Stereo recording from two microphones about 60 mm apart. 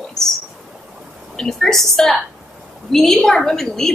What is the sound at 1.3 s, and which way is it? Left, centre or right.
A woman's voice, centre.